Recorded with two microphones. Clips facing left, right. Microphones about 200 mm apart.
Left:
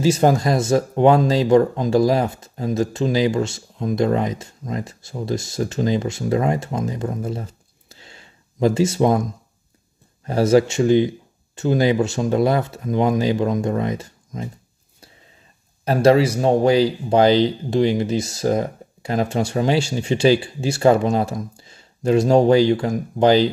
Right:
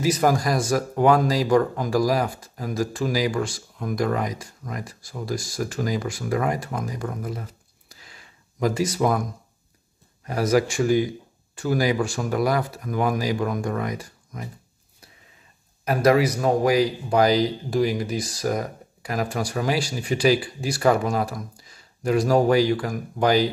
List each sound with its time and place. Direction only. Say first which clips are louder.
0.0 s speech: left 4 dB; 25° left (ahead or behind)
15.8 s speech: left 4 dB; 30° left (ahead or behind)